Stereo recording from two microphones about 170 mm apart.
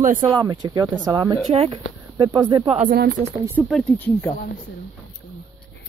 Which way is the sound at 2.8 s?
65° right (ahead or behind).